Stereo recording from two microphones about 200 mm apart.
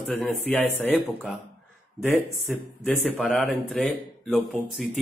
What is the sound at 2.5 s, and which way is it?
Speech, centre (ahead or behind).